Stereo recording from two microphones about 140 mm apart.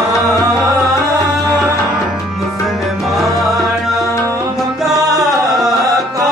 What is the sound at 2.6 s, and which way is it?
Music, centre (ahead or behind).